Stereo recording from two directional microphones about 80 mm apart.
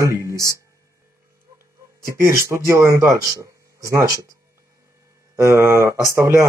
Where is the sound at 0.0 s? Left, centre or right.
Right.